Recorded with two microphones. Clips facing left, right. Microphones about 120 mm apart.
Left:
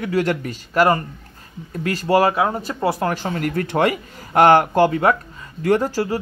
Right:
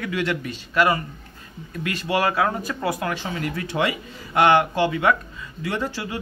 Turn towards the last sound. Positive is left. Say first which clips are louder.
# left 9 dB
turn(degrees=40)  # may be behind; listen again after turning